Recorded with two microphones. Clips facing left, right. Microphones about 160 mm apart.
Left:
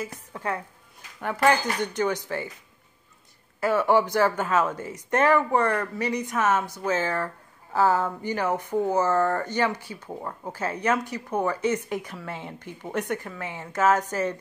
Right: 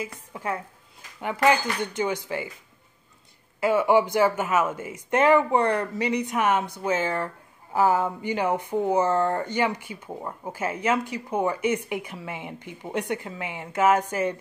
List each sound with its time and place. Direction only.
0.3 s a woman's voice: 10° right (ahead or behind)
3.6 s speech: 15° right (ahead or behind)